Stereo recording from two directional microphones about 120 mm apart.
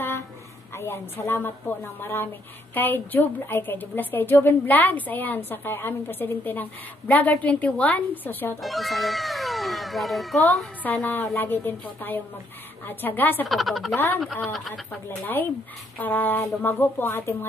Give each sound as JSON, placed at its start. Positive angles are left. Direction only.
{"t": 0.7, "sound": "a woman's voice", "side_deg": 20}
{"t": 8.6, "sound": "speech", "side_deg": 0}
{"t": 10.8, "sound": "a woman's voice", "side_deg": 15}
{"t": 13.5, "sound": "speech", "side_deg": 0}
{"t": 13.9, "sound": "a woman's voice", "side_deg": 15}